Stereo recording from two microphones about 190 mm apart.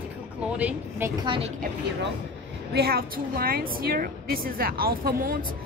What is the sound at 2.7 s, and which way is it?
A woman's voice, 55° right (ahead or behind).